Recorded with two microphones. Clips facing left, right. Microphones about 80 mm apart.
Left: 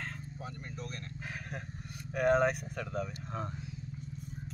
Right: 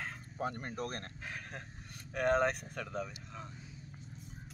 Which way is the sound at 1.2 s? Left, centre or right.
Centre.